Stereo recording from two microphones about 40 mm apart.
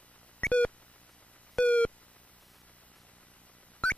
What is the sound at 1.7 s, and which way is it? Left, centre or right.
Busy signal, left.